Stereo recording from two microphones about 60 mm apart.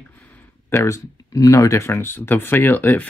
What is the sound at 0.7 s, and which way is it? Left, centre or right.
Speech, left.